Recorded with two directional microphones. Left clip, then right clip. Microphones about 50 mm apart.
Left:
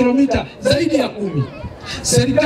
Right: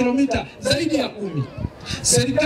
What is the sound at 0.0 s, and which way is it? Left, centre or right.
A woman's voice, right.